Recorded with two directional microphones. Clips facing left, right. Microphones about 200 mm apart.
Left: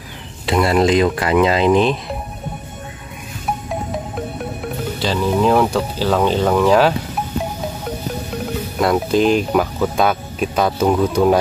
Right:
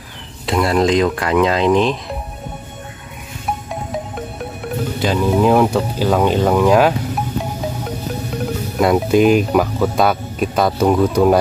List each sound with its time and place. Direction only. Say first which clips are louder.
0.5 s speech: even; 5° left (ahead or behind)
5.0 s speech: right 2 dB; 5° right (ahead or behind)
8.7 s speech: right 3 dB; 5° right (ahead or behind)